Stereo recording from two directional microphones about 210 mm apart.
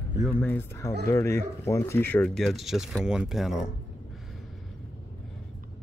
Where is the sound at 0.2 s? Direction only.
10° left (ahead or behind).